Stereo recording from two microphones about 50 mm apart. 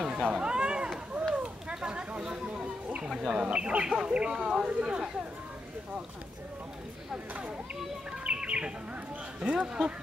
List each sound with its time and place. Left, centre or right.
0.4 s chop: centre
1.3 s chatter: centre
3.0 s speech: centre
3.3 s speech: right
8.2 s bird: right
9.4 s speech: centre